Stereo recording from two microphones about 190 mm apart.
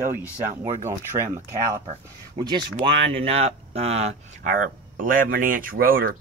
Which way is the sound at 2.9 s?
70° right (ahead or behind).